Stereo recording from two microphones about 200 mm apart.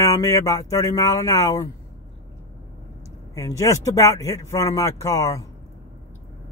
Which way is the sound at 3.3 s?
15° left (ahead or behind).